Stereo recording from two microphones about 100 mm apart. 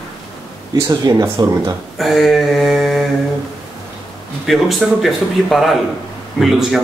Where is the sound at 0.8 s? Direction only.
40° right (ahead or behind).